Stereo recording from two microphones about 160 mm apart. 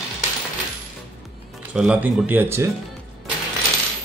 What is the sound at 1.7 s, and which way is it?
A man's voice, 5° right (ahead or behind).